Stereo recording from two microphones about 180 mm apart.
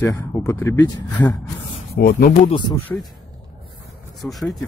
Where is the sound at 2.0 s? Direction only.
55° left (ahead or behind).